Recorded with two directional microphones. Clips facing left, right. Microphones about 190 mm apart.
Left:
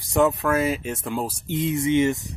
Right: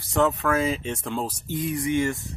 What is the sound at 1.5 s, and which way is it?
Speech, 25° left (ahead or behind).